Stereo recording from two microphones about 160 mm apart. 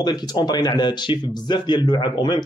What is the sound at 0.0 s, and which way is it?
Speech, 25° left (ahead or behind).